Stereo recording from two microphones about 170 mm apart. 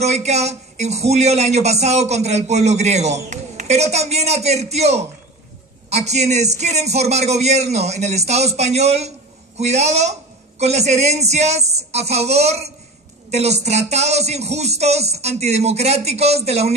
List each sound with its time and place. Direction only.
0.0 s speech: 40° right (ahead or behind)